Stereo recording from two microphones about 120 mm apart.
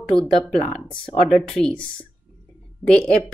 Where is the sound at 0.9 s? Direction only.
45° left (ahead or behind).